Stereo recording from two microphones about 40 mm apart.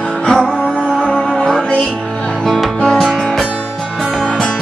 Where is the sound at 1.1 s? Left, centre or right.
Left.